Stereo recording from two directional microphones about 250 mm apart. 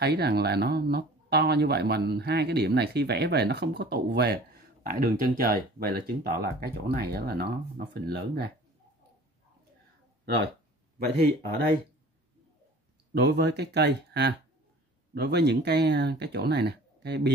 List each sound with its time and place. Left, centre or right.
0.0 s speech: right
13.1 s speech: right